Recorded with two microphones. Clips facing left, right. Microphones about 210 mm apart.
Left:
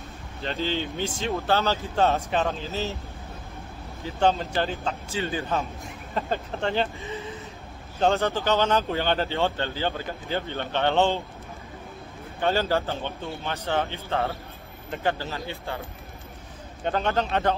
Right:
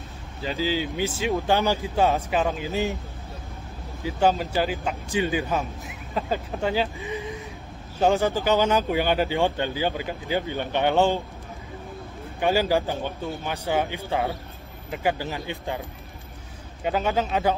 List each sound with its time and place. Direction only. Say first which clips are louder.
0.4 s speech: right 2 dB; 5° right (ahead or behind)
4.0 s speech: right 1 dB; 10° right (ahead or behind)
12.4 s speech: right 2 dB; 10° right (ahead or behind)
16.8 s speech: right 1 dB; 5° right (ahead or behind)